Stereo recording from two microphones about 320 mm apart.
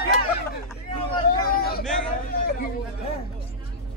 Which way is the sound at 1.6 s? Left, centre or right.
Left.